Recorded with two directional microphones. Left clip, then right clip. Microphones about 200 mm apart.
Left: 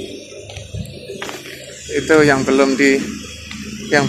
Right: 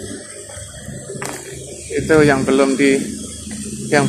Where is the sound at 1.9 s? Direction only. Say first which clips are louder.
Left 1 dB; 10° left (ahead or behind).